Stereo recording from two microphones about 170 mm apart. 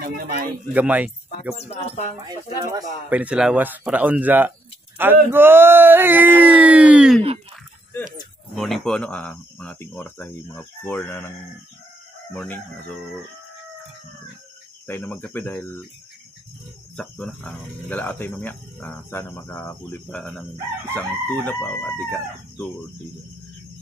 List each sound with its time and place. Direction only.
0.7 s speech: 10° right (ahead or behind)
1.5 s music: 40° left (ahead or behind)
3.1 s speech: 5° right (ahead or behind)
8.5 s speech: centre (ahead or behind)
14.9 s speech: 10° left (ahead or behind)
16.9 s speech: 5° left (ahead or behind)
20.2 s speech: 5° left (ahead or behind)